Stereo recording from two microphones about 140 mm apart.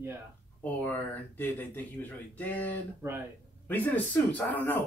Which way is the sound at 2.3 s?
10° left (ahead or behind).